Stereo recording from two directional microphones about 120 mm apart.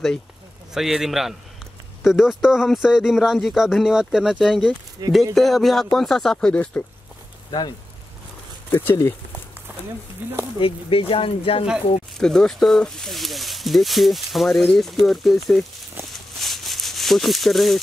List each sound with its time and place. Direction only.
0.7 s speech: 5° right (ahead or behind)
5.0 s speech: 35° right (ahead or behind)
5.3 s speech: centre (ahead or behind)
8.6 s speech: 15° left (ahead or behind)
10.2 s speech: 15° right (ahead or behind)
10.6 s speech: 50° left (ahead or behind)
12.2 s speech: 5° left (ahead or behind)
16.1 s a sound: centre (ahead or behind)